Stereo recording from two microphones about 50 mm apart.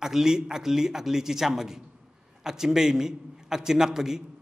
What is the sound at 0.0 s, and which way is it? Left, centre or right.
A man's voice, centre.